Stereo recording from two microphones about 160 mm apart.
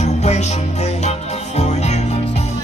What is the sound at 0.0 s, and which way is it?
Music, 45° left (ahead or behind).